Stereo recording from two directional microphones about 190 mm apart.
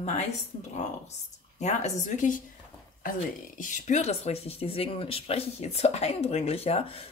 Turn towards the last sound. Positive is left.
turn(degrees=30)  # may be behind; listen again after turning